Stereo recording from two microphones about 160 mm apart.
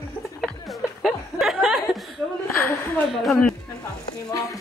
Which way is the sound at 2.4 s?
15° left (ahead or behind).